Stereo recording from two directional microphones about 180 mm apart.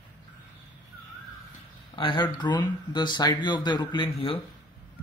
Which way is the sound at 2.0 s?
25° left (ahead or behind).